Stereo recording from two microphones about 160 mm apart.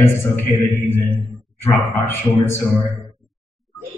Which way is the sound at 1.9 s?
15° left (ahead or behind).